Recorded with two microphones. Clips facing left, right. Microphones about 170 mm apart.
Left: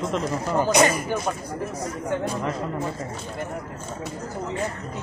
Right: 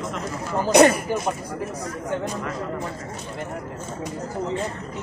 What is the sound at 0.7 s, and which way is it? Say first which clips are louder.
Speech: right 6 dB; 60° right (ahead or behind).